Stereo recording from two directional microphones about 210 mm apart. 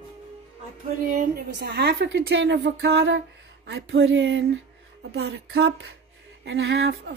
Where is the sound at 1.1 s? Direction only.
50° right (ahead or behind).